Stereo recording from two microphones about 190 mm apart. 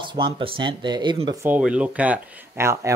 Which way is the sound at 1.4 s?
5° right (ahead or behind).